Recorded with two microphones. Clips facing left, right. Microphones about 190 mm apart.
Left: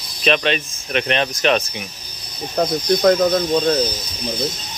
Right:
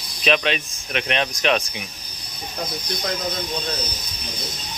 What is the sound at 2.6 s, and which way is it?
Speech, 55° left (ahead or behind).